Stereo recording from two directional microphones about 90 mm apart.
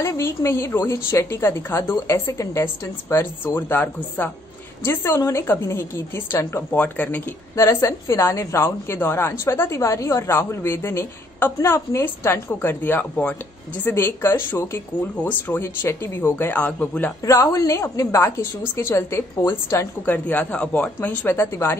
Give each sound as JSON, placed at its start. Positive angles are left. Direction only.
{"t": 0.0, "sound": "a woman's voice", "side_deg": 30}
{"t": 7.5, "sound": "a woman's voice", "side_deg": 30}
{"t": 17.2, "sound": "a woman's voice", "side_deg": 35}